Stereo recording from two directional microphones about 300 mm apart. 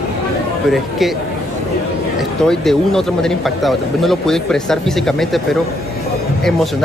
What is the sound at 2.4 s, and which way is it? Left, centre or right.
Speech, centre.